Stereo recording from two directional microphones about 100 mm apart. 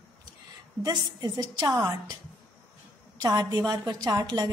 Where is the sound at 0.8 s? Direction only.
40° right (ahead or behind).